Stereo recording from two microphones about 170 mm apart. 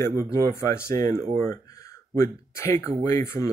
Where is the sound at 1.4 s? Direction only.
20° left (ahead or behind).